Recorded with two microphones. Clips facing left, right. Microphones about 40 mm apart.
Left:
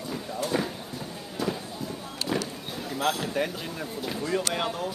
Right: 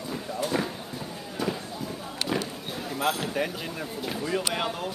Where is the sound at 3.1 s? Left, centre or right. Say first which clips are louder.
Even; centre.